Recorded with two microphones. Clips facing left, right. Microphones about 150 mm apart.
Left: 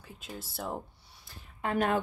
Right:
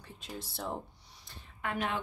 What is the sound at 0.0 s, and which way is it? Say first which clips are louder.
Speech: even; 5° left (ahead or behind).